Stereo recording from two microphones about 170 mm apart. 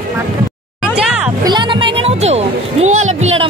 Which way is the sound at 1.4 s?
25° right (ahead or behind).